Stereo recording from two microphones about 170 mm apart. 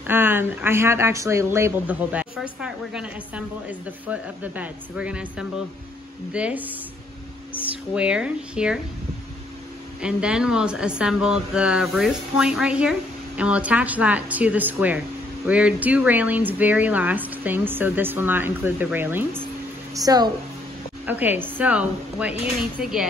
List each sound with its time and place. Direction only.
0.0 s speech: 10° right (ahead or behind)
7.9 s speech: 5° right (ahead or behind)
10.0 s speech: 5° right (ahead or behind); by 20.2 s 20° right (ahead or behind)
21.0 s speech: 10° right (ahead or behind)